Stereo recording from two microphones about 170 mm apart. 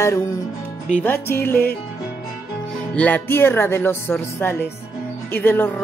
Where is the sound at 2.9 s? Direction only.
10° left (ahead or behind).